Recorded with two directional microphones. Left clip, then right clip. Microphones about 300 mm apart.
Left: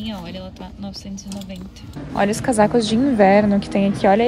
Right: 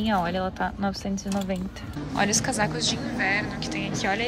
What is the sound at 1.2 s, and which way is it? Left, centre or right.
Speech, centre.